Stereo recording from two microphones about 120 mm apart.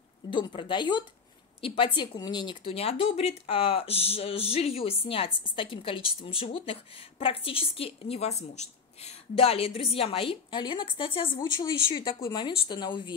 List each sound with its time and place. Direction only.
0.3 s a woman's voice: 45° left (ahead or behind)
11.6 s a woman's voice: 35° left (ahead or behind)